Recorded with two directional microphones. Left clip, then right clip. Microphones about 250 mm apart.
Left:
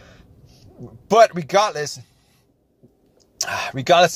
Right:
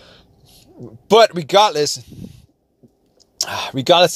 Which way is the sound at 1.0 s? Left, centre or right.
Right.